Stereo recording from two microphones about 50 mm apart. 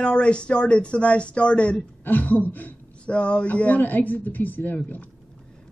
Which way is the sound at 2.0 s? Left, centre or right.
Left.